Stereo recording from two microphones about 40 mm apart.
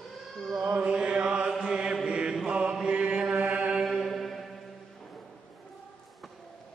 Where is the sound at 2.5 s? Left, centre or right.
Right.